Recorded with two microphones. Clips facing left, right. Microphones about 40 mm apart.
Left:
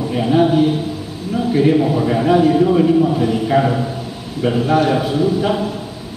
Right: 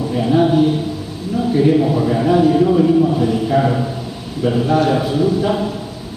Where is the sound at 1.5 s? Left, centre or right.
Centre.